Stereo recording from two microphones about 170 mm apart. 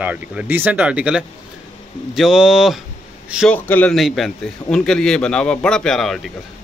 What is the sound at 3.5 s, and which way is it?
Speech, 10° left (ahead or behind).